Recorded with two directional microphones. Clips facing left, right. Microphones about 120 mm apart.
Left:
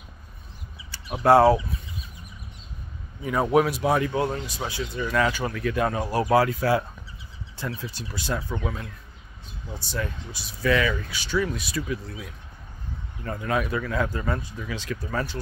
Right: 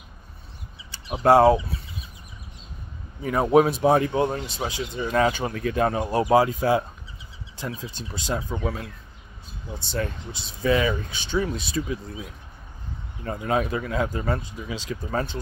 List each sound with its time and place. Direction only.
0.9 s speech: 20° right (ahead or behind)
3.3 s speech: 25° right (ahead or behind)
10.3 s speech: 25° right (ahead or behind)
14.2 s speech: 35° right (ahead or behind)
14.7 s speech: 20° right (ahead or behind)